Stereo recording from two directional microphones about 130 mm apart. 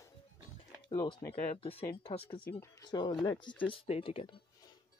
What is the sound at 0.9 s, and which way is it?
Speech, 35° left (ahead or behind).